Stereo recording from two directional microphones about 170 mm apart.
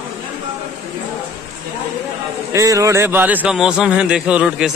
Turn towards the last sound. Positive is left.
turn(degrees=-5)  # may be behind; listen again after turning